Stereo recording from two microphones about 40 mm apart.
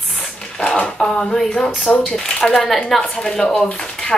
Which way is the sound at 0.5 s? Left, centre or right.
Left.